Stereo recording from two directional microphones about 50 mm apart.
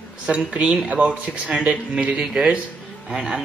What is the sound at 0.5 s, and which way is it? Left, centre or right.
Speech, right.